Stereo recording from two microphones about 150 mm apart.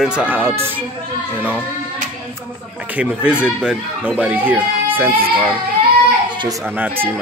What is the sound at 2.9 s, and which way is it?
Speech, 10° right (ahead or behind).